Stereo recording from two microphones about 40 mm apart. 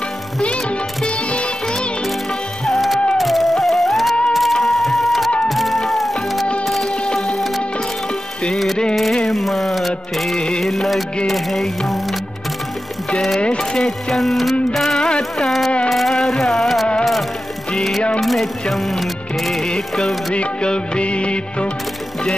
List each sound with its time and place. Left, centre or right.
1.0 s music: left
2.6 s music: centre
9.3 s a sound: centre
10.3 s music: left
10.6 s music: centre
13.4 s music of bollywood: left
13.7 s music: centre
15.0 s carnatic music: centre
15.9 s music: centre
20.3 s music of bollywood: left